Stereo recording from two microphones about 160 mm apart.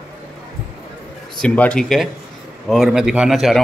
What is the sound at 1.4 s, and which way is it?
A man's voice, 10° left (ahead or behind).